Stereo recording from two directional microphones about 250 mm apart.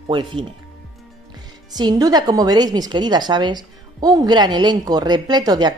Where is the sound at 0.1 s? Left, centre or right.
Centre.